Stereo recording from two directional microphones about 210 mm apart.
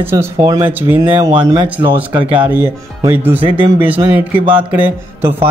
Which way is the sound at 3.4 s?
25° right (ahead or behind).